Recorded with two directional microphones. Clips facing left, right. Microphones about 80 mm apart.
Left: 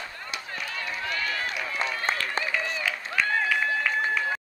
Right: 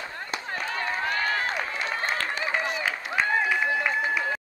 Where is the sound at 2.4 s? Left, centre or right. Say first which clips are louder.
Right 2 dB; right; by 4.2 s centre.